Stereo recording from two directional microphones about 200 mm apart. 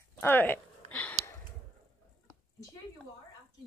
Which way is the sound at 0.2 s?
10° left (ahead or behind).